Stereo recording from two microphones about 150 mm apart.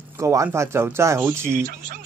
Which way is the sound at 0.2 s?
20° right (ahead or behind).